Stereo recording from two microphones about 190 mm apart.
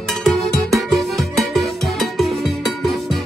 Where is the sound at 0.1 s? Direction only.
Centre (ahead or behind).